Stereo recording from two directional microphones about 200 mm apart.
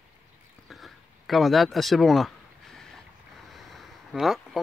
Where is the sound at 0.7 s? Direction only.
Centre (ahead or behind).